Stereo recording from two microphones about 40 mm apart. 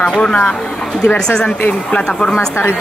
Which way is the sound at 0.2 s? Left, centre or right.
Left.